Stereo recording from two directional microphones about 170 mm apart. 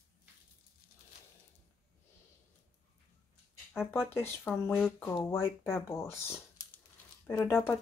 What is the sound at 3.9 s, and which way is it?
Speech, 15° left (ahead or behind).